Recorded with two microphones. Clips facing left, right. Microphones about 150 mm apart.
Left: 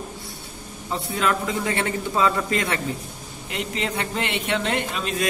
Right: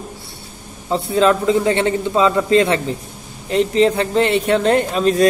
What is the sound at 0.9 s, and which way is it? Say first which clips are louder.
A man's voice: right 9 dB; 30° right (ahead or behind).